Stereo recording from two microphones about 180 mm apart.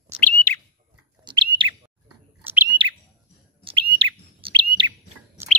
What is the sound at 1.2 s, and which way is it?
Bird, 25° right (ahead or behind).